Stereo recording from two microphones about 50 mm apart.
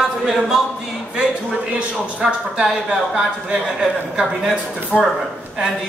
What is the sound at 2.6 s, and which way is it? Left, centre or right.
A woman's voice, centre.